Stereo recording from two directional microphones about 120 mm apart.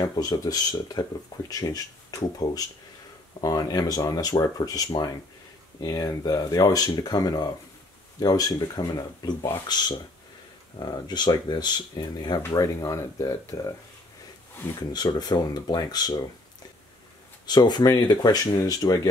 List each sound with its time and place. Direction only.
0.0 s speech: 35° left (ahead or behind)
10.8 s speech: 35° left (ahead or behind)
14.8 s speech: 35° left (ahead or behind)
17.5 s speech: 35° left (ahead or behind)